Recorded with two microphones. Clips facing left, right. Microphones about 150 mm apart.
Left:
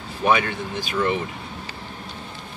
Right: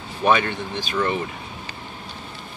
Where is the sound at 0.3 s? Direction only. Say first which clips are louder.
Right 1 dB; 10° left (ahead or behind).